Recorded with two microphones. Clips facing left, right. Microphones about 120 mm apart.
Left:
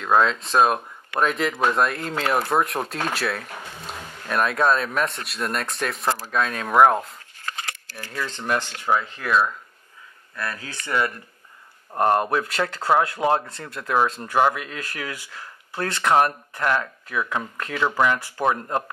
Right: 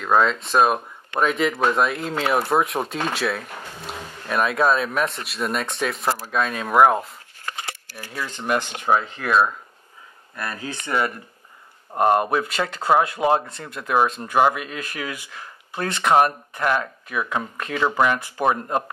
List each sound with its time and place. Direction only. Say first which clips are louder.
0.0 s speech: even; centre (ahead or behind); by 9.3 s 20° right (ahead or behind)
10.3 s speech: right 1 dB; 20° right (ahead or behind)